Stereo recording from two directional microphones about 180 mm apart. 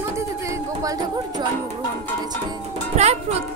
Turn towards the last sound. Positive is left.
turn(degrees=-35)  # may be behind; listen again after turning